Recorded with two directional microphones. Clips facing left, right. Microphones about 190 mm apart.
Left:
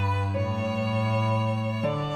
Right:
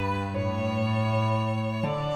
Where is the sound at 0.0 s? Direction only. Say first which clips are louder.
Right 1 dB; centre (ahead or behind).